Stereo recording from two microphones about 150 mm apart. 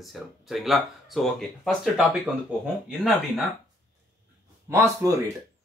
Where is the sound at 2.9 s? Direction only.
Centre (ahead or behind).